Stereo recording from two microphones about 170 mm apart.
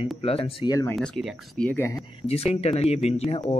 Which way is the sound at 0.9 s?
5° left (ahead or behind).